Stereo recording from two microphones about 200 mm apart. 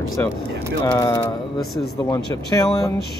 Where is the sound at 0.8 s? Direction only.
15° left (ahead or behind).